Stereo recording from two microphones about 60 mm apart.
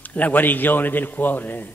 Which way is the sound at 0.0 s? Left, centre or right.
Left.